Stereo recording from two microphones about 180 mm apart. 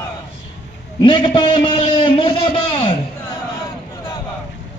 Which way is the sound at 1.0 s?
25° left (ahead or behind).